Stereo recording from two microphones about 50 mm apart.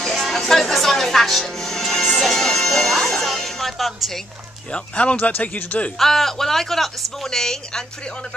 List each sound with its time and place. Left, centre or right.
0.0 s speech: centre
4.6 s a man's voice: left
5.9 s speech: centre